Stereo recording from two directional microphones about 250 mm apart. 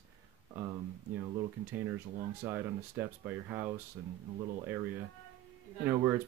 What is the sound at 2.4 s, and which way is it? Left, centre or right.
Speech, centre.